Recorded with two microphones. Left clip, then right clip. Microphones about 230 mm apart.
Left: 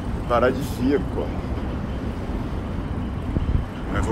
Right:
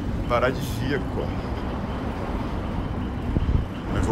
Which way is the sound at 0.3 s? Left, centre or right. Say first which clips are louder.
Left 3 dB; right.